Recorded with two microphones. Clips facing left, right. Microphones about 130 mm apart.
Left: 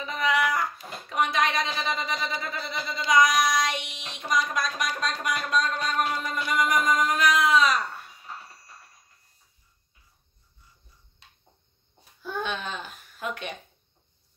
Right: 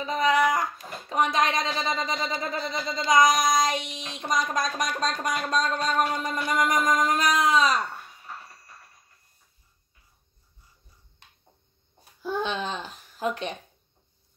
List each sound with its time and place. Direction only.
0.0 s a sound: 35° right (ahead or behind)
1.0 s speech: 35° right (ahead or behind)
3.3 s child singing: 45° right (ahead or behind)
4.3 s speech: 45° right (ahead or behind)
6.6 s music: centre (ahead or behind)
7.1 s speech: 35° right (ahead or behind)
12.2 s a child's voice: 25° right (ahead or behind)